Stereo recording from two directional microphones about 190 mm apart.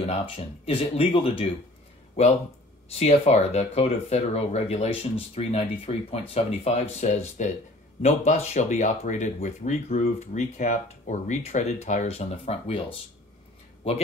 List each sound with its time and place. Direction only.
0.0 s speech: 30° left (ahead or behind)
2.9 s speech: 35° left (ahead or behind)
13.9 s speech: 30° left (ahead or behind)